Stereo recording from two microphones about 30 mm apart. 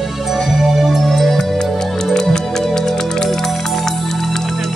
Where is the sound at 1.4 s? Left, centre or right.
Centre.